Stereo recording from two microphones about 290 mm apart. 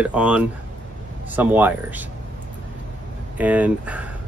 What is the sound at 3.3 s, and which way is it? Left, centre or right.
Speech, centre.